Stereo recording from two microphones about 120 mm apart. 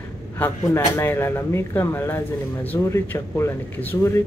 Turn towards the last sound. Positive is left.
turn(degrees=20)  # may be behind; listen again after turning